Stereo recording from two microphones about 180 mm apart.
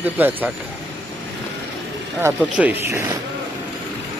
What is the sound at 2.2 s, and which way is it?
Speech, 10° right (ahead or behind).